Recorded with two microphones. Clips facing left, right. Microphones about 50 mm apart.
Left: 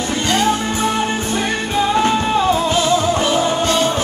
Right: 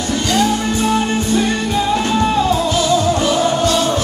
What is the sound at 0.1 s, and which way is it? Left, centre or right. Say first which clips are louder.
Music: right 1 dB; left.